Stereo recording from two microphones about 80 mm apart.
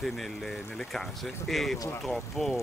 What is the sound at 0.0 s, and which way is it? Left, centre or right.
Speech, centre.